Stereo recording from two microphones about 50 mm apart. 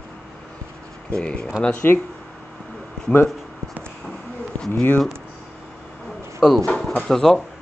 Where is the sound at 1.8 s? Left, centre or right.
Left.